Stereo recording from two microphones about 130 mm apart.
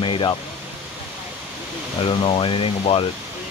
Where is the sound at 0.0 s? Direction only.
40° left (ahead or behind).